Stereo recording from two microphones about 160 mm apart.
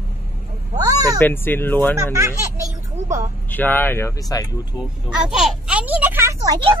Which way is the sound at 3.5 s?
10° left (ahead or behind).